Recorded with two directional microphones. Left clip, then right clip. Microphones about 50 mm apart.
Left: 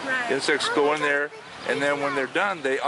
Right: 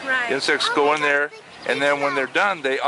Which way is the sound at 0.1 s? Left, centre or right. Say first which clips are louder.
Right 3 dB; right.